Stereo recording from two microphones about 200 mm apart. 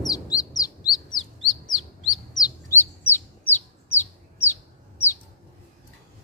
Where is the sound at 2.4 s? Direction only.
10° left (ahead or behind).